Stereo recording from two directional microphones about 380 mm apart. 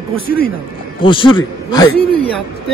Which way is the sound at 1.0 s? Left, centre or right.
Centre.